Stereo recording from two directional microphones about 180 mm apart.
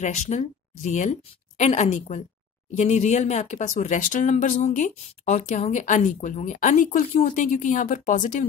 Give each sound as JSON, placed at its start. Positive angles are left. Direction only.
{"t": 0.0, "sound": "speech", "side_deg": 40}